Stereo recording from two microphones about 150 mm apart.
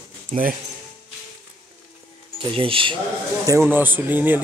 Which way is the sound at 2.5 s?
35° right (ahead or behind).